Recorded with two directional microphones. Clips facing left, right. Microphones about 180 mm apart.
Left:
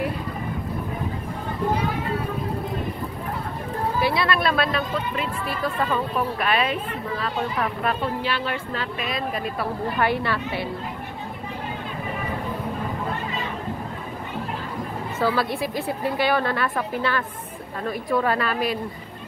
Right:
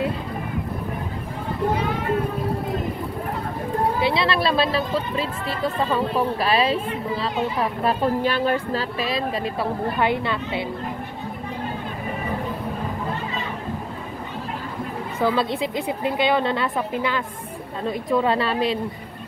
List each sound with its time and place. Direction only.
4.0 s speech: 25° right (ahead or behind)
8.0 s speech: 45° right (ahead or behind); by 10.7 s 20° right (ahead or behind)
15.1 s speech: 20° right (ahead or behind)